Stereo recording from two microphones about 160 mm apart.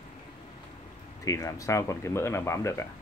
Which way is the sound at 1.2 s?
20° left (ahead or behind).